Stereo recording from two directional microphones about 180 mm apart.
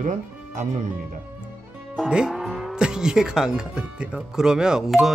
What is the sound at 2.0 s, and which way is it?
Speech, 5° right (ahead or behind).